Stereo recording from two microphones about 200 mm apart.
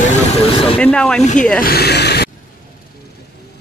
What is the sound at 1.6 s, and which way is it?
Speech, 50° left (ahead or behind).